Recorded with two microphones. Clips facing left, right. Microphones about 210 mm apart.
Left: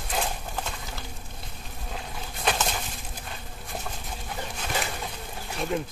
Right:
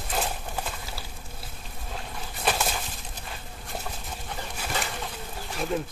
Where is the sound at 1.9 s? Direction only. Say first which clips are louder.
Even; 5° right (ahead or behind).